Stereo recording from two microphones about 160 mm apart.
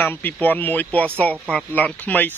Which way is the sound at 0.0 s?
10° left (ahead or behind).